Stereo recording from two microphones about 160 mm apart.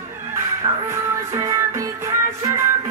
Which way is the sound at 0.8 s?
20° right (ahead or behind).